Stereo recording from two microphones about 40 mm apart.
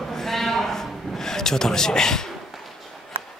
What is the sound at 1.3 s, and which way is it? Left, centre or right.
Speech, centre.